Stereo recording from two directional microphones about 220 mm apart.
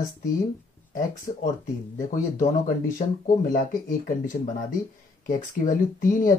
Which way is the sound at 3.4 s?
35° left (ahead or behind).